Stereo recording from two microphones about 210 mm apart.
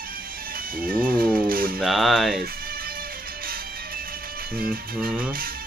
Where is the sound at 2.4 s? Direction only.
45° right (ahead or behind).